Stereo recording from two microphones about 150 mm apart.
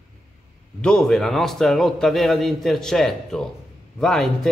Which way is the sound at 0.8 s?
5° left (ahead or behind).